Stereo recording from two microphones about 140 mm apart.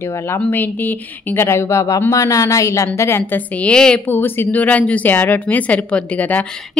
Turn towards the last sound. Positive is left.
turn(degrees=10)  # may be behind; listen again after turning